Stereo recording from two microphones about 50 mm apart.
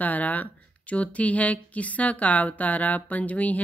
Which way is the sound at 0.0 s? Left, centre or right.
Left.